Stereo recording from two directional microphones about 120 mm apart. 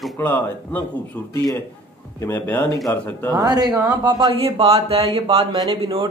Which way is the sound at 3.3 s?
35° right (ahead or behind).